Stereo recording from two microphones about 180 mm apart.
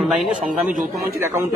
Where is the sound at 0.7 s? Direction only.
55° right (ahead or behind).